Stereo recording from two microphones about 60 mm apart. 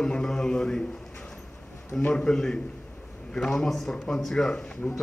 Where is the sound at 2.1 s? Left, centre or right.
Centre.